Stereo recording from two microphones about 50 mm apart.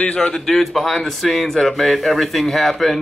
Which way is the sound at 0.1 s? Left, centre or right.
Centre.